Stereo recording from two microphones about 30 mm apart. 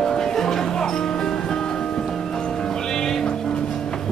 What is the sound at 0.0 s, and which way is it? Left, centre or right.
Music, centre.